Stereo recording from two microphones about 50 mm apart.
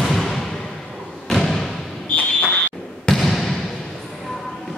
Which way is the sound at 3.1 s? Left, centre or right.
Centre.